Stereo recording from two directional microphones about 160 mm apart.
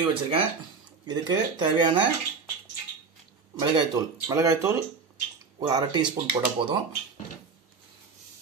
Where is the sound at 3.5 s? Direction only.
25° right (ahead or behind).